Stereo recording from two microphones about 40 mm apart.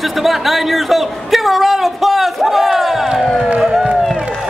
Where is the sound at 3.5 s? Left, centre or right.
Centre.